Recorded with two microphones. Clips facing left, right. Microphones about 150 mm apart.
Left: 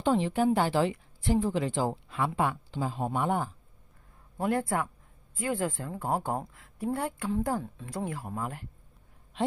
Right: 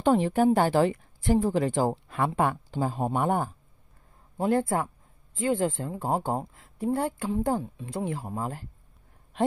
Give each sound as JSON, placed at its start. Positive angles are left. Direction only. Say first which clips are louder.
{"t": 0.0, "sound": "speech", "louder": "right 4 dB", "side_deg": -50}
{"t": 4.4, "sound": "speech", "louder": "right 4 dB", "side_deg": -30}
{"t": 7.4, "sound": "speech", "louder": "right 4 dB", "side_deg": -20}